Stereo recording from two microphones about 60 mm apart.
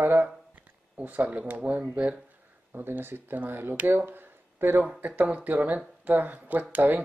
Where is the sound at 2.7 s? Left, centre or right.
Right.